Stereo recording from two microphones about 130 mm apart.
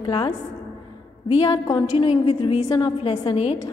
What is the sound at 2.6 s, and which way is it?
Speech, 30° left (ahead or behind).